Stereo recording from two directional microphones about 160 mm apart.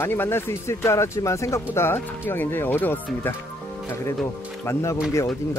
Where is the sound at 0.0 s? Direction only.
15° left (ahead or behind).